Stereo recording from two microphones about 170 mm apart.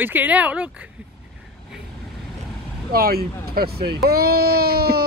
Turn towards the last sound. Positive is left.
turn(degrees=-65)  # may be behind; listen again after turning